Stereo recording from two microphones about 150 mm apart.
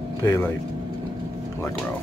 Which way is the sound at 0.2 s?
15° left (ahead or behind).